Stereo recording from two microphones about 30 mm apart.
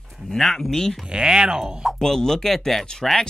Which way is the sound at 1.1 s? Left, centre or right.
Right.